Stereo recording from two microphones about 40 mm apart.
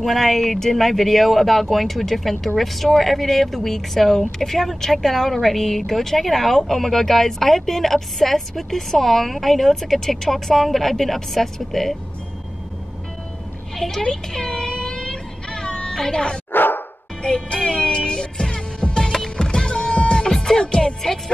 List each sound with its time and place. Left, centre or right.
0.0 s speech: centre
13.7 s a woman's voice: centre
14.0 s music: centre
16.5 s music: left
17.2 s music: left
20.3 s music: centre